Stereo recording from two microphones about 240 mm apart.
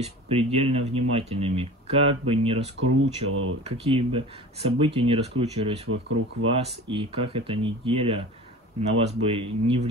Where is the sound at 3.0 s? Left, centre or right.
Right.